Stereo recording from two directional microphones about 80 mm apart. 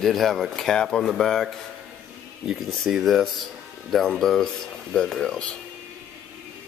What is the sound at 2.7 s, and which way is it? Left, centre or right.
A man's voice, centre.